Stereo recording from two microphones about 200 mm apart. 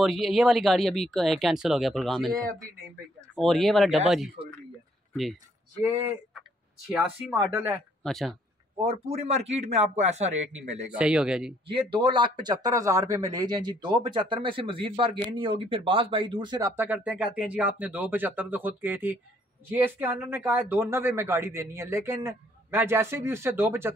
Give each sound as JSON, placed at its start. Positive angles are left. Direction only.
{"t": 0.0, "sound": "speech", "side_deg": 0}
{"t": 3.3, "sound": "speech", "side_deg": 0}
{"t": 7.3, "sound": "speech", "side_deg": -15}
{"t": 8.0, "sound": "speech", "side_deg": 0}
{"t": 8.7, "sound": "a man's voice", "side_deg": -25}
{"t": 10.9, "sound": "speech", "side_deg": -5}
{"t": 11.6, "sound": "speech", "side_deg": -25}